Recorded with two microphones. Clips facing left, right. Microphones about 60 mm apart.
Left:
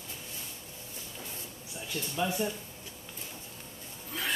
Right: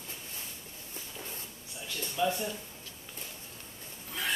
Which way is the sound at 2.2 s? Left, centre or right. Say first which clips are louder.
Right 1 dB; centre.